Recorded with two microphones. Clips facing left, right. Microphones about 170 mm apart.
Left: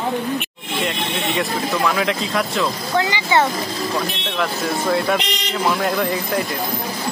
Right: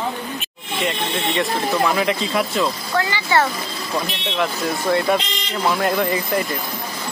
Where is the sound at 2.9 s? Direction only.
20° left (ahead or behind).